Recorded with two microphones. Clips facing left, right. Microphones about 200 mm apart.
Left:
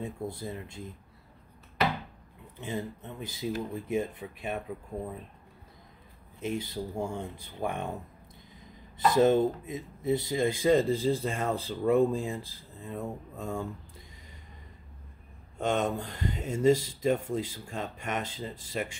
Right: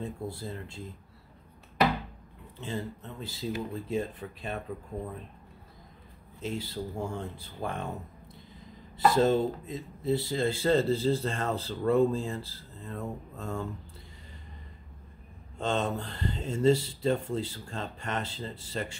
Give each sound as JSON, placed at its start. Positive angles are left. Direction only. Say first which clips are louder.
{"t": 0.0, "sound": "speech", "louder": "left 1 dB", "side_deg": 15}
{"t": 2.6, "sound": "speech", "louder": "left 1 dB", "side_deg": 15}
{"t": 6.4, "sound": "speech", "louder": "left 2 dB", "side_deg": 15}
{"t": 8.9, "sound": "speech", "louder": "left 1 dB", "side_deg": 15}
{"t": 15.6, "sound": "speech", "louder": "left 1 dB", "side_deg": 10}